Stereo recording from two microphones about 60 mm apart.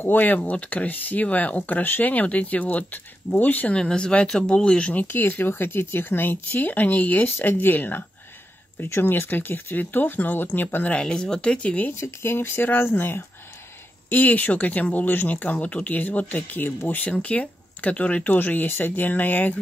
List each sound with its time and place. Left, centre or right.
0.0 s speech: left
3.7 s speech: centre
5.0 s speech: left
8.7 s speech: left
9.0 s speech: left
11.0 s speech: centre
12.0 s speech: left
14.0 s speech: left